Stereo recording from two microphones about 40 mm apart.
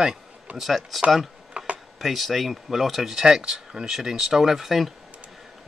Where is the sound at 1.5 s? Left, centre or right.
Right.